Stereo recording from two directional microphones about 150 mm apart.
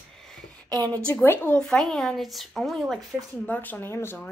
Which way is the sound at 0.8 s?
10° left (ahead or behind).